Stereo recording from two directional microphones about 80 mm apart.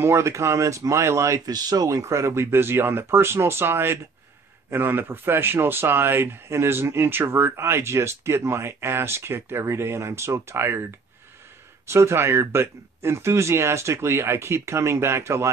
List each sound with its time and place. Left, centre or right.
0.0 s a man's voice: right
1.4 s a man's voice: right
11.9 s a man's voice: right